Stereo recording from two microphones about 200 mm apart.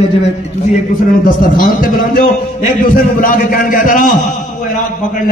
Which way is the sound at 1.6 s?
45° left (ahead or behind).